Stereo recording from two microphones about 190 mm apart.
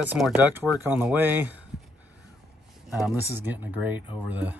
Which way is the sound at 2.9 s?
5° right (ahead or behind).